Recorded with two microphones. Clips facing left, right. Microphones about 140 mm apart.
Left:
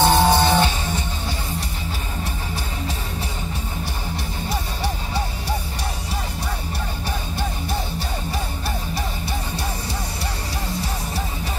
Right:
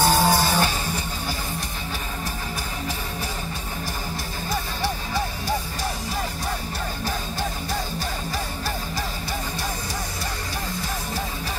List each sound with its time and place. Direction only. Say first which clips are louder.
0.0 s music: left 3 dB; 25° left (ahead or behind)